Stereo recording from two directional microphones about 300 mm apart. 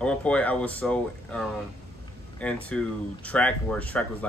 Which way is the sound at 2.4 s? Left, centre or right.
Centre.